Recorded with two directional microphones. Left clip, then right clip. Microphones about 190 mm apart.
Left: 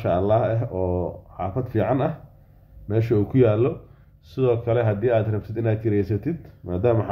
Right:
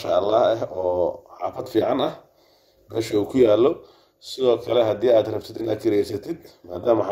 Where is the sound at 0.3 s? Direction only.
25° right (ahead or behind).